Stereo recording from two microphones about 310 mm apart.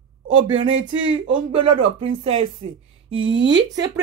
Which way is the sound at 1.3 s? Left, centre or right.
Centre.